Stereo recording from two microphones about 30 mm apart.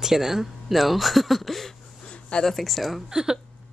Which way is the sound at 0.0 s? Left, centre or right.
Centre.